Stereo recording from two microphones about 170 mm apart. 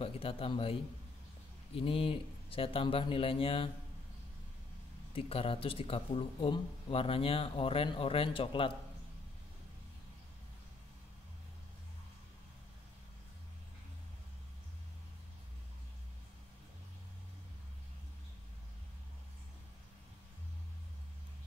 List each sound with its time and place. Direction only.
0.0 s speech: 35° left (ahead or behind)
1.8 s speech: 30° left (ahead or behind)
5.1 s speech: 35° left (ahead or behind)